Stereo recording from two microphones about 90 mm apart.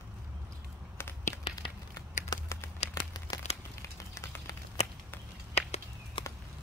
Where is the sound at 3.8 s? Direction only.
35° left (ahead or behind).